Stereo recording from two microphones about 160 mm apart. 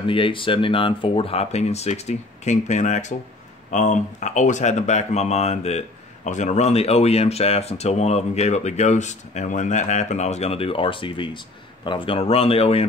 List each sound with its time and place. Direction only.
0.0 s speech: 35° left (ahead or behind)